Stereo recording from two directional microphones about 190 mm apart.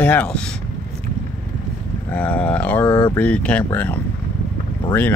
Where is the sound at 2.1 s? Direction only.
5° left (ahead or behind).